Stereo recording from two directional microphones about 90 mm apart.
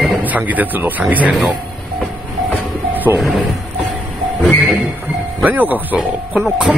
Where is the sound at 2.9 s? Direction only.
20° right (ahead or behind).